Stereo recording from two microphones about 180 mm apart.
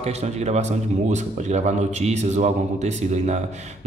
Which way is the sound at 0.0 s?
35° right (ahead or behind).